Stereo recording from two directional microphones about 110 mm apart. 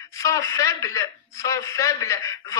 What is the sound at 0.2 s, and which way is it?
Speech, 30° left (ahead or behind).